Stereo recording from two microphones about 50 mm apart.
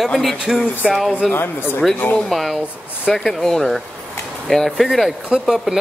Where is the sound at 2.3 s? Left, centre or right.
Centre.